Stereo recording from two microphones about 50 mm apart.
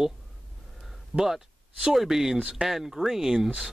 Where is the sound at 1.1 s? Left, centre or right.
Centre.